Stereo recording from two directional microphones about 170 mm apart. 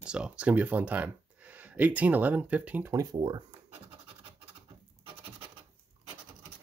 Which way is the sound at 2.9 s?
20° right (ahead or behind).